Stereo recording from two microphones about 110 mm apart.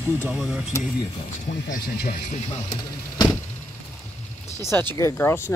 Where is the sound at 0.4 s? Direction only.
5° right (ahead or behind).